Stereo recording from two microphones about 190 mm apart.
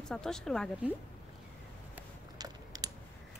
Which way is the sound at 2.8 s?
20° right (ahead or behind).